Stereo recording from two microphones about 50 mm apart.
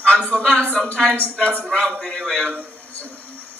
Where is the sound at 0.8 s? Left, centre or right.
Centre.